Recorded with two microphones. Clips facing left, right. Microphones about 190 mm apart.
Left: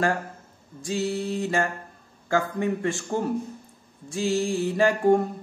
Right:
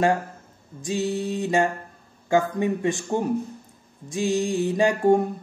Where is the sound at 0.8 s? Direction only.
20° right (ahead or behind).